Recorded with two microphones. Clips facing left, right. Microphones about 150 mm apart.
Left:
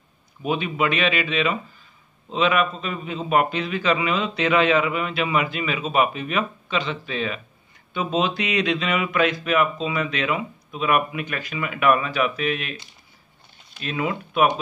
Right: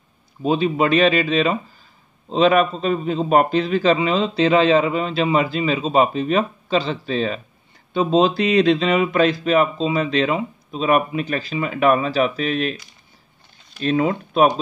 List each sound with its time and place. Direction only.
0.4 s speech: 35° right (ahead or behind)
13.7 s speech: 35° right (ahead or behind)